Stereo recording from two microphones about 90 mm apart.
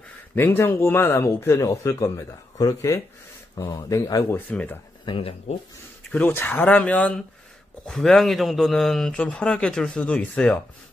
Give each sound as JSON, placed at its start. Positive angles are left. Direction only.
{"t": 0.4, "sound": "speech", "side_deg": 25}
{"t": 4.4, "sound": "speech", "side_deg": 20}
{"t": 5.0, "sound": "speech", "side_deg": 80}
{"t": 6.1, "sound": "speech", "side_deg": 25}
{"t": 7.8, "sound": "speech", "side_deg": 5}
{"t": 9.1, "sound": "speech", "side_deg": 15}